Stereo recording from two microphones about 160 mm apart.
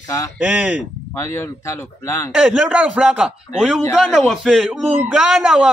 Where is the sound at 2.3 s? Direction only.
5° right (ahead or behind).